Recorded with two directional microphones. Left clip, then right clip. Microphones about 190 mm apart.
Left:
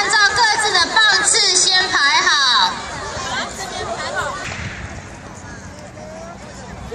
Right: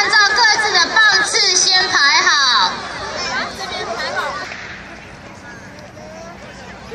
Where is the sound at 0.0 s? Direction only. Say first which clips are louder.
Right 2 dB; 5° left (ahead or behind).